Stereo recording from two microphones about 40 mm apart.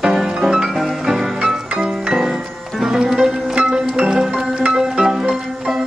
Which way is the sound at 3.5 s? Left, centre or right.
Right.